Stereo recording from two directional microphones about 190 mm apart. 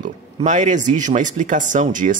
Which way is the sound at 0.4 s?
40° right (ahead or behind).